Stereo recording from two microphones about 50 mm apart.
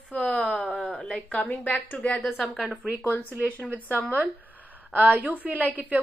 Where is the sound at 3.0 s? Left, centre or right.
Left.